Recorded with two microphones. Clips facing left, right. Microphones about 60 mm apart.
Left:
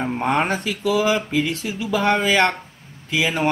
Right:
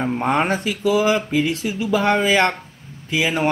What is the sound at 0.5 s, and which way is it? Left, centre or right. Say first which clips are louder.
Speech: right 2 dB; centre.